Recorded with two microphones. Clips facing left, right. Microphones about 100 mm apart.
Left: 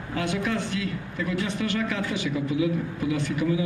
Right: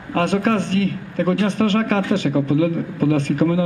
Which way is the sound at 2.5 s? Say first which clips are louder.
Right 6 dB; 50° right (ahead or behind).